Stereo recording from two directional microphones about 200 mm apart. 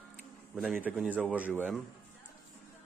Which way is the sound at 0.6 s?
5° right (ahead or behind).